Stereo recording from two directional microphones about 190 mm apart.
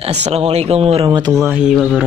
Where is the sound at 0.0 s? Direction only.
35° right (ahead or behind).